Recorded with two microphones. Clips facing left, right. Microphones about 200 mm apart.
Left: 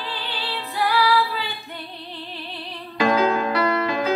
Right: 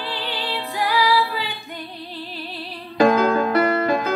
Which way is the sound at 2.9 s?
50° right (ahead or behind).